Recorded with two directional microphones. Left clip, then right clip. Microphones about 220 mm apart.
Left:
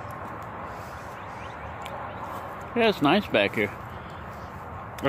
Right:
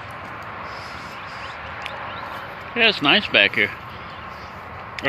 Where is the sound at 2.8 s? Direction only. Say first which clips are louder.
Right 5 dB; 20° left (ahead or behind).